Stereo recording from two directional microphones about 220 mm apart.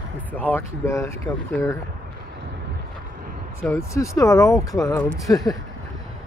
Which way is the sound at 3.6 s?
10° left (ahead or behind).